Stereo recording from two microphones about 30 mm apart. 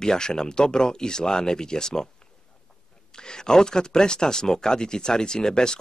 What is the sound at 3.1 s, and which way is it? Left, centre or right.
Speech, left.